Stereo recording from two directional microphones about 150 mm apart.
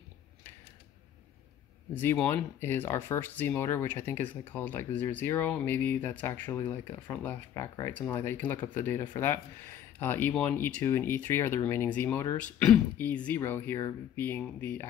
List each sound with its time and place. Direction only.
2.0 s speech: 10° left (ahead or behind)